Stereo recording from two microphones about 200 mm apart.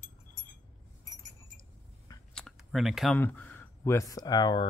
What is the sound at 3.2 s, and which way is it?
Speech, 10° left (ahead or behind).